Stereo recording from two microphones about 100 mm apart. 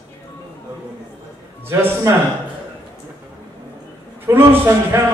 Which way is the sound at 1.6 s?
20° right (ahead or behind).